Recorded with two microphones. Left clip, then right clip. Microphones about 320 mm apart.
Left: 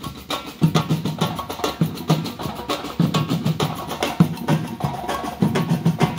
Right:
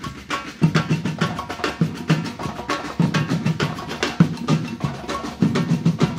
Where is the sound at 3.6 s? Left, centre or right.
Left.